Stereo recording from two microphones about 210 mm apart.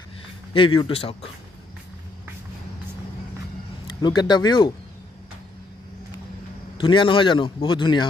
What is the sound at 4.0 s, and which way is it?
Speech, 20° left (ahead or behind).